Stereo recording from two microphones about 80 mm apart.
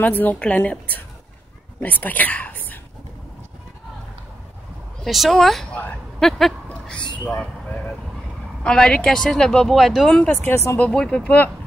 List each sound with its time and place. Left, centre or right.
0.0 s a woman's voice: left
5.0 s speech: centre
5.7 s a woman's voice: left
6.1 s speech: centre
6.7 s a sound: centre
8.6 s speech: centre
10.3 s a woman's voice: left
10.9 s speech: centre